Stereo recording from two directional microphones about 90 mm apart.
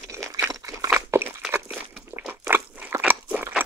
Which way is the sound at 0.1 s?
35° right (ahead or behind).